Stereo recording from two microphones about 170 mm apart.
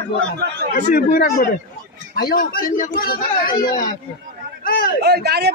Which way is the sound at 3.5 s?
25° left (ahead or behind).